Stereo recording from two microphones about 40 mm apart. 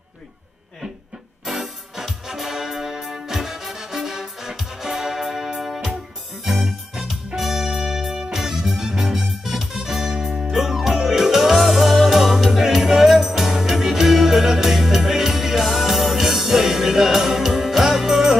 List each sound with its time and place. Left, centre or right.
1.4 s music: centre